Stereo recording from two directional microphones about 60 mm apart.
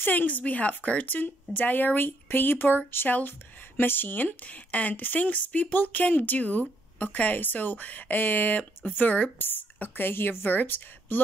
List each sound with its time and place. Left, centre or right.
0.0 s speech: left